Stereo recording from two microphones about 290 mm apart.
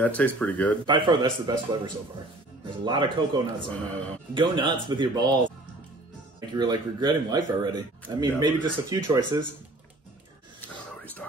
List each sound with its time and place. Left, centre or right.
0.0 s speech: centre
0.8 s speech: centre
2.8 s speech: centre
6.5 s speech: centre